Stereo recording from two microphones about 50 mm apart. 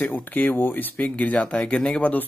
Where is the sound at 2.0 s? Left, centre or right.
Left.